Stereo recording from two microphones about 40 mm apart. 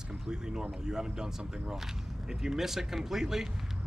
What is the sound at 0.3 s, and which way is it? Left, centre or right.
Speech, centre.